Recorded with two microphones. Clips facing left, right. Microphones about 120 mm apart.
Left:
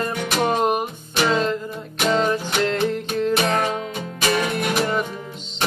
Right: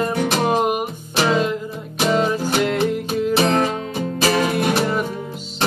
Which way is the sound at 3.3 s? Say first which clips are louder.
Right 6 dB; 35° right (ahead or behind).